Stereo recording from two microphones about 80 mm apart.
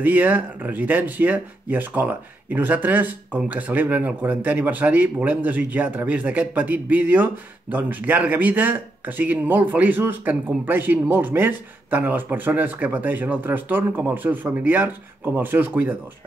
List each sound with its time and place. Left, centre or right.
0.0 s speech: right